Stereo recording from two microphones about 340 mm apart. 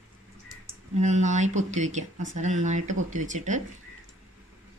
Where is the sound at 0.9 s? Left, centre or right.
Right.